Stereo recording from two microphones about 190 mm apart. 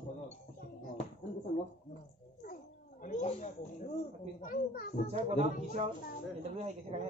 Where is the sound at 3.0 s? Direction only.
35° left (ahead or behind).